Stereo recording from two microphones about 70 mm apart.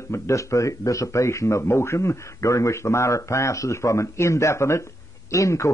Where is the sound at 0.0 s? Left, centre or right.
Left.